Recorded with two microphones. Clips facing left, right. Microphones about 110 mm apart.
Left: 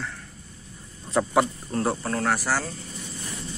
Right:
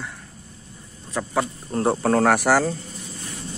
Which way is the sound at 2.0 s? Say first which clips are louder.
Right 8 dB; 80° right.